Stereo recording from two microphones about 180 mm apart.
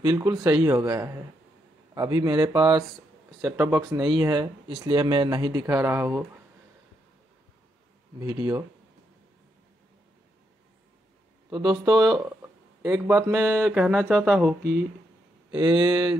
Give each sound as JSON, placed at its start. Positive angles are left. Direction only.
{"t": 0.0, "sound": "speech", "side_deg": -20}
{"t": 8.2, "sound": "speech", "side_deg": -20}
{"t": 11.5, "sound": "speech", "side_deg": -20}
{"t": 15.5, "sound": "speech", "side_deg": -25}